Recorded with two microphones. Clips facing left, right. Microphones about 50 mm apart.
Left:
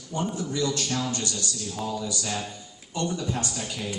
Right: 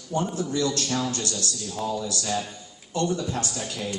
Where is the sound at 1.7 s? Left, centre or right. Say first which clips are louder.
Right 3 dB; centre.